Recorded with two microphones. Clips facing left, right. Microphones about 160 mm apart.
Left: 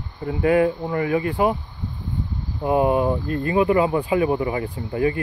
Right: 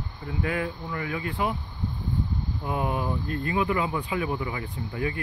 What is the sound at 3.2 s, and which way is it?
Speech, 40° left (ahead or behind).